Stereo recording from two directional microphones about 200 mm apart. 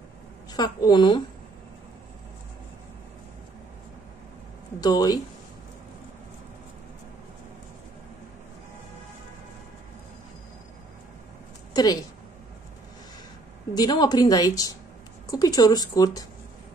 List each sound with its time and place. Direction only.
0.5 s speech: 20° left (ahead or behind)
4.7 s speech: 20° left (ahead or behind)
11.7 s a woman's voice: 20° left (ahead or behind)
13.7 s speech: 20° left (ahead or behind)